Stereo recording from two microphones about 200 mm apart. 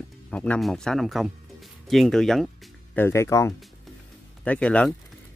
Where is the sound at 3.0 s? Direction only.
15° left (ahead or behind).